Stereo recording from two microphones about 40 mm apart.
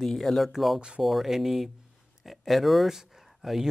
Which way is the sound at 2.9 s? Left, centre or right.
Centre.